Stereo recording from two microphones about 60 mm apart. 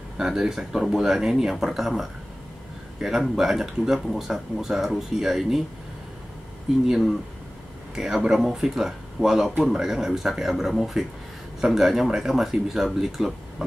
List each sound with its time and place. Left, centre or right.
0.2 s speech: centre
7.9 s speech: centre